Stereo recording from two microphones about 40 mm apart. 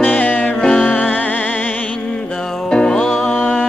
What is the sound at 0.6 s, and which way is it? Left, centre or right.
Music, left.